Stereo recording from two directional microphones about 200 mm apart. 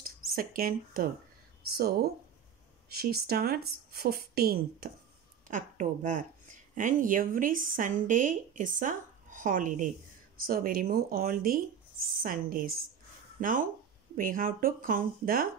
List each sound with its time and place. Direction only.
0.0 s speech: 45° right (ahead or behind)
5.5 s speech: 40° right (ahead or behind)